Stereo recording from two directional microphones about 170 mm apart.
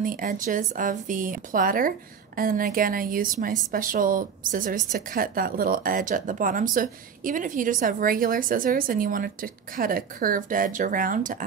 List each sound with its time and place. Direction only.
0.0 s speech: 50° right (ahead or behind)